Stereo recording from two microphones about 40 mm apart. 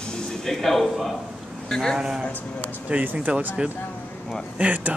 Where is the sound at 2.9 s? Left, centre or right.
Right.